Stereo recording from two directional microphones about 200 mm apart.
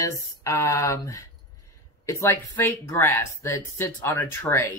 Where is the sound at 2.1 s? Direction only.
15° left (ahead or behind).